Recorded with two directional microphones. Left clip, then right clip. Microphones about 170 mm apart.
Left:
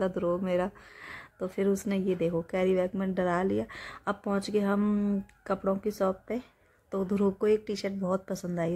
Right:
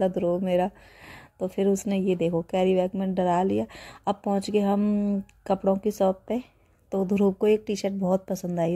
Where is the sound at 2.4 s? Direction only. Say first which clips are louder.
Right 4 dB; 10° right (ahead or behind).